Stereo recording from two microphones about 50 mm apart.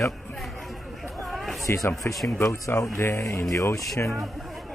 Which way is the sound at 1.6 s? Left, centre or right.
Left.